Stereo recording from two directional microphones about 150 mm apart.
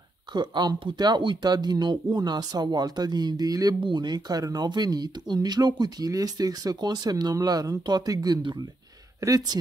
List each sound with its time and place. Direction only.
0.3 s speech: 30° right (ahead or behind)